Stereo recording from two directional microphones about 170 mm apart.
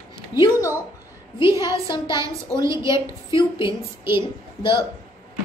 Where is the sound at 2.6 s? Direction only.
20° right (ahead or behind).